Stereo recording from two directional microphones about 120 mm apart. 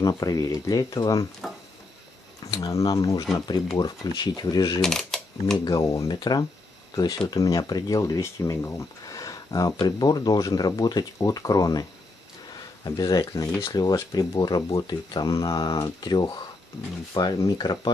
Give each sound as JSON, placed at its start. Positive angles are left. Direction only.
{"t": 0.0, "sound": "speech", "side_deg": 30}
{"t": 1.4, "sound": "a sound", "side_deg": 0}
{"t": 2.4, "sound": "speech", "side_deg": 25}
{"t": 4.8, "sound": "typewriter", "side_deg": 5}
{"t": 5.7, "sound": "speech", "side_deg": 30}
{"t": 12.8, "sound": "speech", "side_deg": 30}